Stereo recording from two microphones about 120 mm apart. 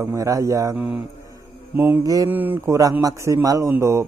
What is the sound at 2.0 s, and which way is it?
Speech, 30° right (ahead or behind).